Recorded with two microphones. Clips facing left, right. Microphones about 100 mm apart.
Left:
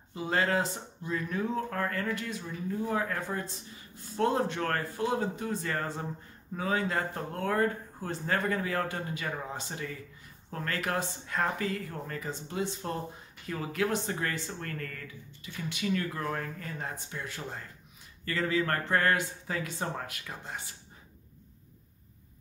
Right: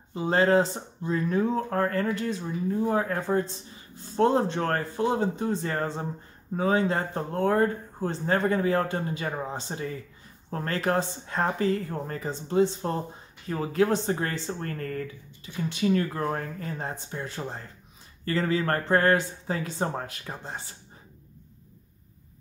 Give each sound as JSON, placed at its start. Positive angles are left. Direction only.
{"t": 0.1, "sound": "speech", "side_deg": -30}